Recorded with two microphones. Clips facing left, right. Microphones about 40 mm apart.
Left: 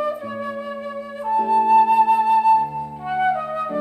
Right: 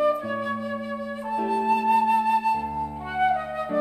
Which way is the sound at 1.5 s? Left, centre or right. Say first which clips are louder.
Left 7 dB; centre.